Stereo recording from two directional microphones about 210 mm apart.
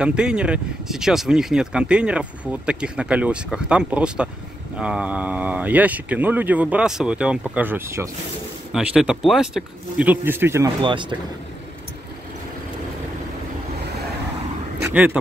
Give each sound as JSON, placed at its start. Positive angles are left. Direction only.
{"t": 0.0, "sound": "speech", "side_deg": -5}
{"t": 10.8, "sound": "speech", "side_deg": -25}
{"t": 14.8, "sound": "a sound", "side_deg": -10}